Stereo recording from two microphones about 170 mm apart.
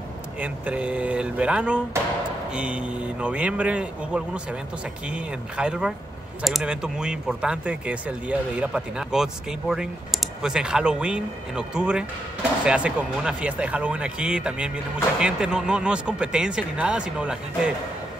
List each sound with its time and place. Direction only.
0.4 s speech: 10° right (ahead or behind)